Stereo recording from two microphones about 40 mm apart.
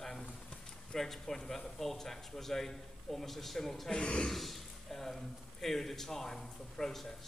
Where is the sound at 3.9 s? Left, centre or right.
Left.